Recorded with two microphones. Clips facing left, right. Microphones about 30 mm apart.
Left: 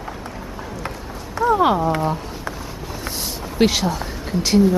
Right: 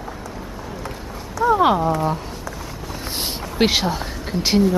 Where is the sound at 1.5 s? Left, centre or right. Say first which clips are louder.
Even; centre.